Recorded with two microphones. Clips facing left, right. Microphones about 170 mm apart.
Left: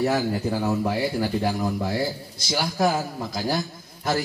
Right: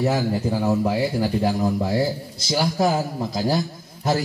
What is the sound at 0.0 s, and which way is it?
A man's voice, 15° right (ahead or behind).